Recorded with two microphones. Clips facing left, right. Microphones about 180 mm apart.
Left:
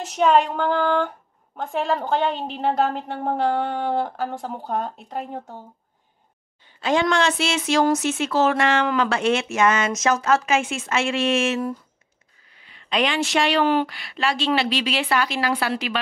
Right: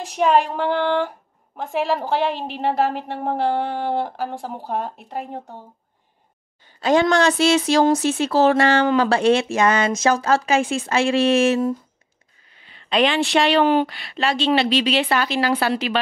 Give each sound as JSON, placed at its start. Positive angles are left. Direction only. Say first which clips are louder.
{"t": 0.0, "sound": "a woman's voice", "louder": "even", "side_deg": 0}
{"t": 6.8, "sound": "speech", "louder": "right 4 dB", "side_deg": -40}
{"t": 12.6, "sound": "speech", "louder": "right 4 dB", "side_deg": -30}